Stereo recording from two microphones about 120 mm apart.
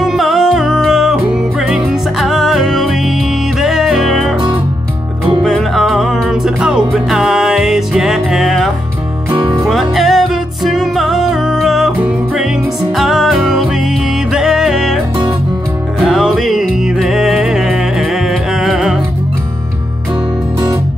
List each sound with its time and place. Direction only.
0.0 s music: centre (ahead or behind)
5.4 s music: centre (ahead or behind)
9.3 s music: 40° right (ahead or behind)
9.7 s music: centre (ahead or behind)
12.9 s music: centre (ahead or behind)
16.0 s music: centre (ahead or behind)